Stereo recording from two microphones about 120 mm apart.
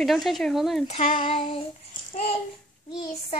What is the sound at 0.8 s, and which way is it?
Child singing, 55° left (ahead or behind).